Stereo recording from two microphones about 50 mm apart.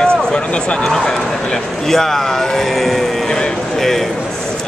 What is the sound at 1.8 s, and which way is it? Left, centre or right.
Speech, centre.